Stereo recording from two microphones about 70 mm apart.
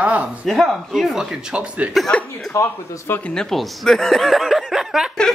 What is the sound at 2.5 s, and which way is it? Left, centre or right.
Speech, left.